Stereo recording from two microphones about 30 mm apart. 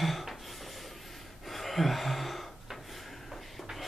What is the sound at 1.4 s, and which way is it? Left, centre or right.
Gasp, centre.